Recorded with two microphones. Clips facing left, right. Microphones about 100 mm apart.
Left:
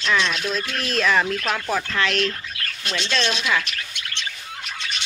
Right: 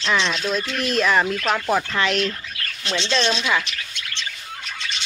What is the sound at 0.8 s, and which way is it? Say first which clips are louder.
Speech: right 1 dB; 10° right (ahead or behind).